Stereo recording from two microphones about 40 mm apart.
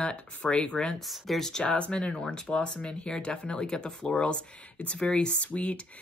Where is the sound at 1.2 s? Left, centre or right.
Centre.